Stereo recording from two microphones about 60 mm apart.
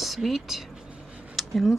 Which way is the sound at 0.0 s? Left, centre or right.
Centre.